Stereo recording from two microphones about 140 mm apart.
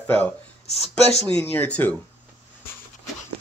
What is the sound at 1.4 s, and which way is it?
Speech, 15° left (ahead or behind).